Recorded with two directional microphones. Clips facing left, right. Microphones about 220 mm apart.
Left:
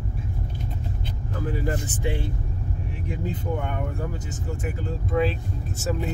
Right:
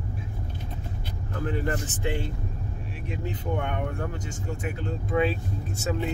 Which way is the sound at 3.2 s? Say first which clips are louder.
Left 1 dB; 5° left (ahead or behind).